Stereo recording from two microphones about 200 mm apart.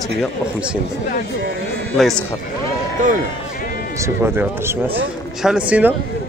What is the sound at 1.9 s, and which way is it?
Speech, centre (ahead or behind).